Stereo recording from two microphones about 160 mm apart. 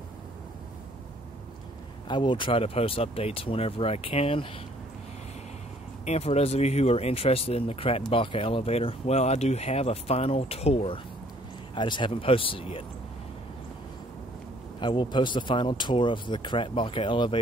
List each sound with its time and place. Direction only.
2.0 s speech: 30° left (ahead or behind)
6.0 s speech: 40° left (ahead or behind)
14.8 s speech: 30° left (ahead or behind)